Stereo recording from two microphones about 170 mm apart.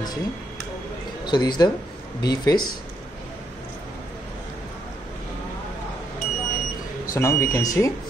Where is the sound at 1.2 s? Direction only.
25° left (ahead or behind).